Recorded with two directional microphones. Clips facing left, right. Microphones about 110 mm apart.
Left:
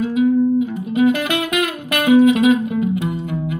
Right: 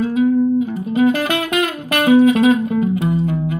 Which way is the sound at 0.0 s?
35° right (ahead or behind).